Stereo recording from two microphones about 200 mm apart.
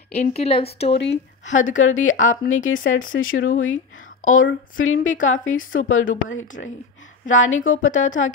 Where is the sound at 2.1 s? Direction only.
40° left (ahead or behind).